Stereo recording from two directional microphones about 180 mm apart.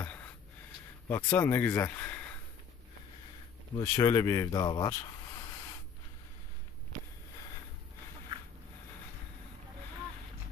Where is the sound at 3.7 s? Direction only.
20° left (ahead or behind).